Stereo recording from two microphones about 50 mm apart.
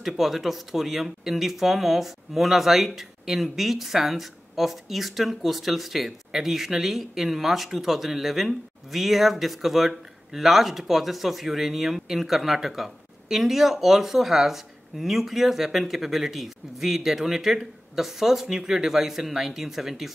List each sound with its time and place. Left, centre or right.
0.0 s speech: centre